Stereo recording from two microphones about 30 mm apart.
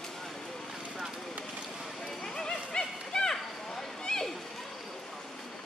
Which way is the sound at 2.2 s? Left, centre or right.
Left.